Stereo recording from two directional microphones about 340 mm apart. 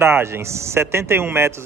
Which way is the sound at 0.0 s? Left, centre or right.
Centre.